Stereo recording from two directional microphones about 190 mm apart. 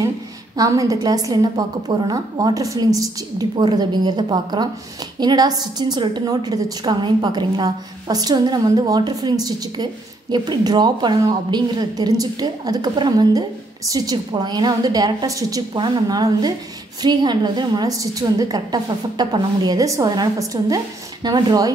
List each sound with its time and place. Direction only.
0.6 s a woman's voice: 20° right (ahead or behind)